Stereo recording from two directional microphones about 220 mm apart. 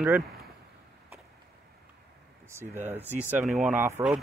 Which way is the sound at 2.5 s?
10° right (ahead or behind).